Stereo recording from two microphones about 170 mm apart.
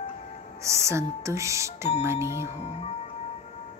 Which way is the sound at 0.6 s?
15° right (ahead or behind).